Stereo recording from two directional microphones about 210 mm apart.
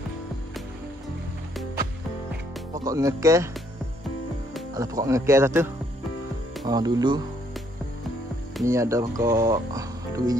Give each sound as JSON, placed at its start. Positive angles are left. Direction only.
{"t": 2.7, "sound": "speech", "side_deg": -15}
{"t": 4.7, "sound": "speech", "side_deg": -15}
{"t": 8.6, "sound": "speech", "side_deg": -15}